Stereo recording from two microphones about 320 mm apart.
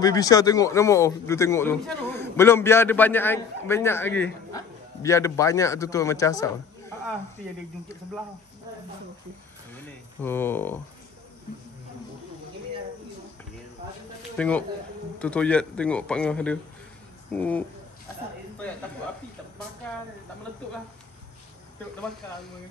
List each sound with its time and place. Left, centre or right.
0.0 s a man's voice: centre
9.8 s speech: centre
14.3 s a man's voice: centre